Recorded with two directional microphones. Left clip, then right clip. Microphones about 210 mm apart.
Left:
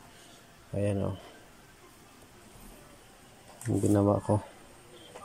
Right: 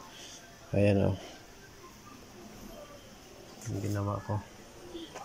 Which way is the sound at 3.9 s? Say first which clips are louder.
Left 11 dB; 25° left (ahead or behind).